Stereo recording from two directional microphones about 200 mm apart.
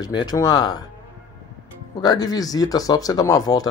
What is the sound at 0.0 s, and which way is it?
Speech, 20° left (ahead or behind).